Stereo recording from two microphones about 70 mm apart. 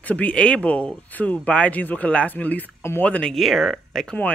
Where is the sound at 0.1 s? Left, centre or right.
Centre.